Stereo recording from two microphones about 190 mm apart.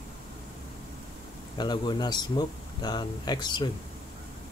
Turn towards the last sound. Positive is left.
turn(degrees=25)  # may be behind; listen again after turning